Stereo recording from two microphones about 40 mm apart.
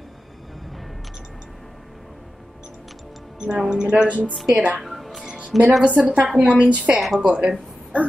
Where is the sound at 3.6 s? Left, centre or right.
Centre.